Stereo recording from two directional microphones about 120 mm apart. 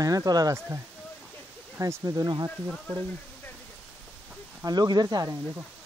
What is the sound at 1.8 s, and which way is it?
Speech, 30° right (ahead or behind).